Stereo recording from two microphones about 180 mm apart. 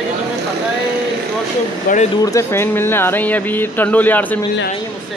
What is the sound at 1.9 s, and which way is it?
Speech, 50° left (ahead or behind).